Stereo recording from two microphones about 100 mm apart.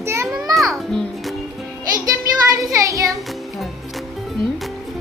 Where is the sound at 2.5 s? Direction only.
30° right (ahead or behind).